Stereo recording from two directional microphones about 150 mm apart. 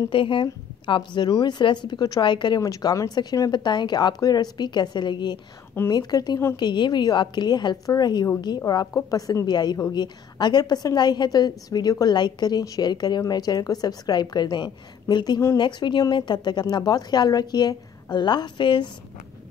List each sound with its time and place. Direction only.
0.1 s a woman's voice: 35° left (ahead or behind)